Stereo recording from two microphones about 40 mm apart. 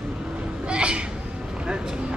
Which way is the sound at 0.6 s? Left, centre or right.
Right.